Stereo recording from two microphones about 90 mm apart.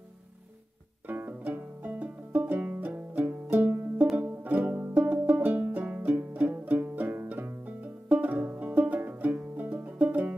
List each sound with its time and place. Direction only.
1.0 s music: 20° right (ahead or behind)